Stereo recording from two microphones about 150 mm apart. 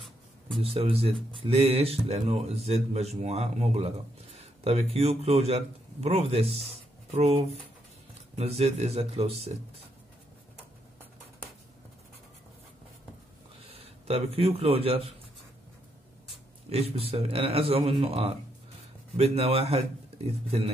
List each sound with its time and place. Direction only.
0.6 s a man's voice: 40° right (ahead or behind)
13.7 s a man's voice: 40° right (ahead or behind)
16.6 s a man's voice: 45° right (ahead or behind)